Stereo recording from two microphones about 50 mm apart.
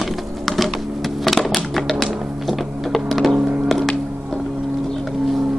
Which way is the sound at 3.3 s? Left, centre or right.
Right.